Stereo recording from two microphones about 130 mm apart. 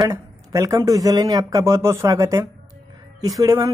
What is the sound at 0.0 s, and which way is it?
Speech, 25° right (ahead or behind).